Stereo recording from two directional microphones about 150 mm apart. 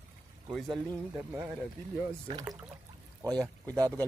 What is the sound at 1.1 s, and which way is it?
Speech, 15° right (ahead or behind).